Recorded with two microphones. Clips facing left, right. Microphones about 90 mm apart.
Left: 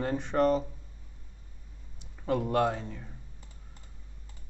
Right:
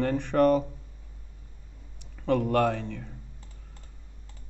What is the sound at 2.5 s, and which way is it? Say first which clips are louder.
Speech: right 3 dB; 60° right (ahead or behind).